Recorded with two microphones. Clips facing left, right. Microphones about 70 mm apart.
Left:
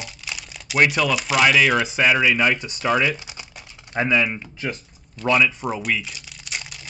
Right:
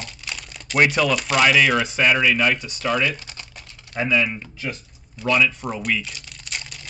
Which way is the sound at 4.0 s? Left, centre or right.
Left.